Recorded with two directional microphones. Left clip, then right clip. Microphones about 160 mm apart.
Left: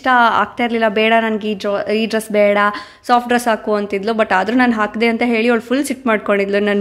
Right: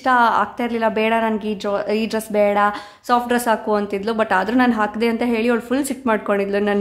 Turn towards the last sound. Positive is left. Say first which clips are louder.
# left 4 dB
turn(degrees=20)  # may be behind; listen again after turning